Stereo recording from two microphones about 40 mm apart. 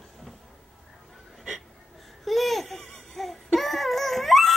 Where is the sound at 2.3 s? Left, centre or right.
Centre.